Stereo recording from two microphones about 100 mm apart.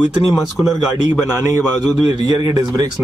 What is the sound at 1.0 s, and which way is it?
A man's voice, 35° right (ahead or behind).